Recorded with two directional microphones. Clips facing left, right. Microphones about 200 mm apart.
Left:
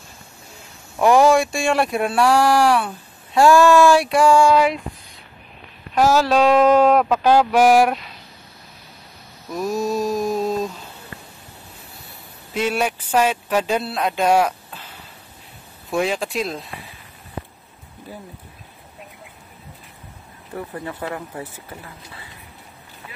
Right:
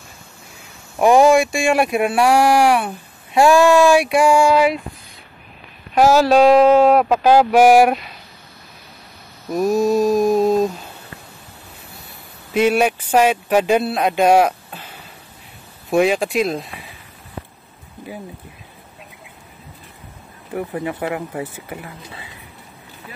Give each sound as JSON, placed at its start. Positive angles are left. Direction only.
{"t": 0.9, "sound": "speech", "side_deg": -15}
{"t": 5.9, "sound": "speech", "side_deg": -10}
{"t": 9.5, "sound": "mantra", "side_deg": -15}
{"t": 12.5, "sound": "speech", "side_deg": -15}
{"t": 15.9, "sound": "speech", "side_deg": -15}
{"t": 20.5, "sound": "speech", "side_deg": -15}